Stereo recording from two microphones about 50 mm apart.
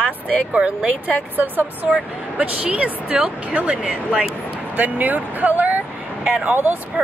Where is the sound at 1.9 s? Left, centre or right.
Right.